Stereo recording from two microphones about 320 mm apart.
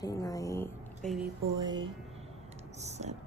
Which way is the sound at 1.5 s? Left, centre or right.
Centre.